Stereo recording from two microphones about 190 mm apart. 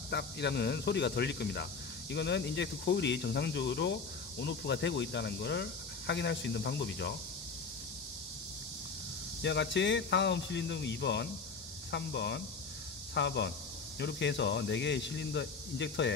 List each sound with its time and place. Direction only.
0.1 s speech: 60° left (ahead or behind)
9.4 s speech: 65° left (ahead or behind)